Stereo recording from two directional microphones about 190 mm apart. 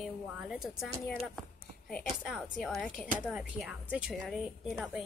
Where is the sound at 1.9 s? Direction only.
5° left (ahead or behind).